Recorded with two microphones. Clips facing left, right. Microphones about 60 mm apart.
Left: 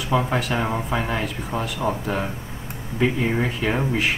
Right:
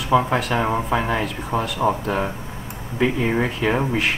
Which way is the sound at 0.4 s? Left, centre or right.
Centre.